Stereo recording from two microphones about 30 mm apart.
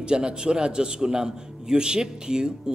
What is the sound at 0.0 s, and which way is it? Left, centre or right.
A man's voice, right.